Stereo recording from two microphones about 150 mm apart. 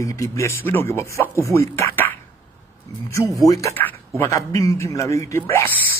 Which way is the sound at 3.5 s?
20° left (ahead or behind).